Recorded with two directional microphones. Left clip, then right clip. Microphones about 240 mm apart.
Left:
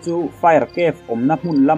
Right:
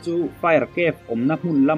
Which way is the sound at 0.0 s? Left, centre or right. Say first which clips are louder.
Left 6 dB; centre.